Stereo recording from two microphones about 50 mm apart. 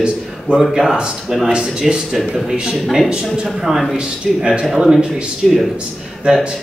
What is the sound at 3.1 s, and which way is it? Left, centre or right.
Speech, centre.